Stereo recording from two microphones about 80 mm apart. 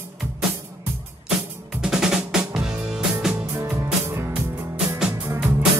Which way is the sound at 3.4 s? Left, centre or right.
Right.